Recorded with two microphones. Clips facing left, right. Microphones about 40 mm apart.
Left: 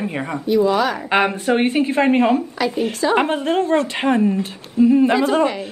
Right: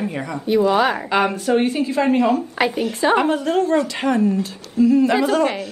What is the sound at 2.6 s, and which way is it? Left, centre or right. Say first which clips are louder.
Speech: right 1 dB; right.